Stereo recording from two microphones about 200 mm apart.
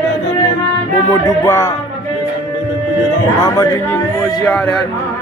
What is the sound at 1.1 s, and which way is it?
Music, 15° left (ahead or behind).